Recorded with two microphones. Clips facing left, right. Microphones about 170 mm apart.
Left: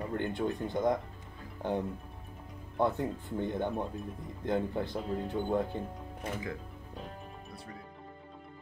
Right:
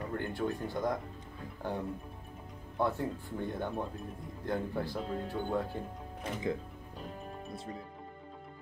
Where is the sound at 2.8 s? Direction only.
20° left (ahead or behind).